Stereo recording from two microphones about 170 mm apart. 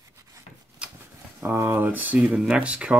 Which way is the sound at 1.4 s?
15° right (ahead or behind).